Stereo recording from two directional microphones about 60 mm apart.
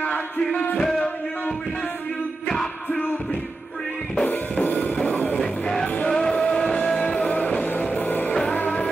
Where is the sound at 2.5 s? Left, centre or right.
Centre.